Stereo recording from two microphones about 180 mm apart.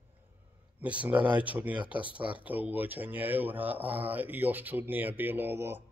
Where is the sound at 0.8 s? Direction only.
5° right (ahead or behind).